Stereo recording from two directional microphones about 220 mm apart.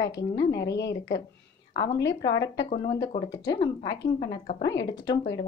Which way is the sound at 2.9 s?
20° left (ahead or behind).